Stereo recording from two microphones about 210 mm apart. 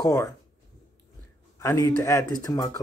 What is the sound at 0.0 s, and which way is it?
Speech, 15° left (ahead or behind).